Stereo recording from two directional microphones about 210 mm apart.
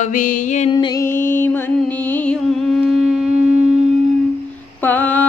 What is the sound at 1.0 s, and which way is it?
Music, 10° left (ahead or behind).